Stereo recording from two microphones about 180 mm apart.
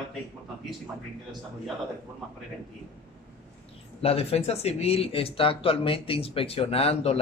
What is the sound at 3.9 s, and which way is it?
Speech, 35° left (ahead or behind).